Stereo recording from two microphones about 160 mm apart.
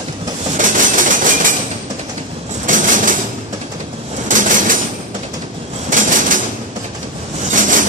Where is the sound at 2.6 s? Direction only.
55° right (ahead or behind).